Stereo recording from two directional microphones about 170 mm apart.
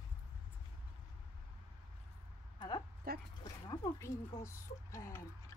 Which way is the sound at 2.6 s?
25° left (ahead or behind).